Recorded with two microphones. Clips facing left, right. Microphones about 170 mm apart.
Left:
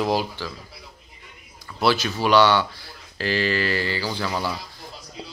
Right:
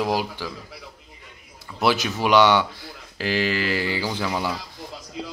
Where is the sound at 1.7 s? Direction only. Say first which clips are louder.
Even; 20° right (ahead or behind).